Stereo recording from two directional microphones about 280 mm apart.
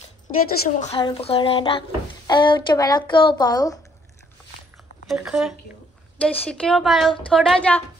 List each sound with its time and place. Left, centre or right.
0.7 s speech: left
5.0 s a woman's voice: centre